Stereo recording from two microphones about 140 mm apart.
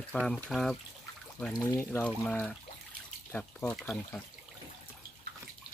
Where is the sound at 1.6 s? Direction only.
15° left (ahead or behind).